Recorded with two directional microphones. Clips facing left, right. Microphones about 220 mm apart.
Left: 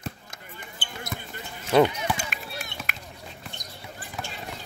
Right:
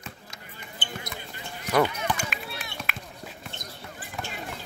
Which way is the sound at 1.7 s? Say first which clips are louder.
Left 4 dB; 15° left (ahead or behind).